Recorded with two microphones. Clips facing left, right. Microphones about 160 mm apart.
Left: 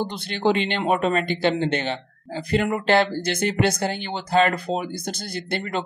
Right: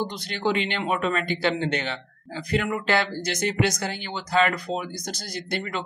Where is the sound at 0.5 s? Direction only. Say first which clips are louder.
Left 4 dB; 30° left (ahead or behind).